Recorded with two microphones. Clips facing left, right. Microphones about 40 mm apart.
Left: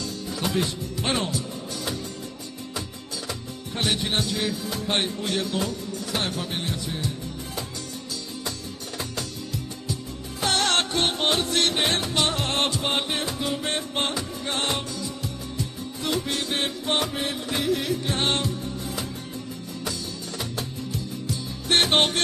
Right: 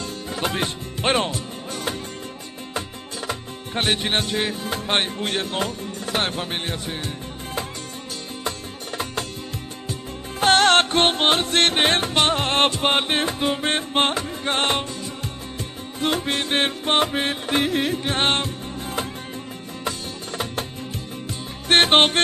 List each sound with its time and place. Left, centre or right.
0.0 s speech: right
3.3 s music: right
8.5 s music: right
10.4 s music: right
19.8 s music: right